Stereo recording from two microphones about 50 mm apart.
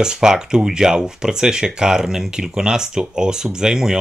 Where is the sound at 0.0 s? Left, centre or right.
Centre.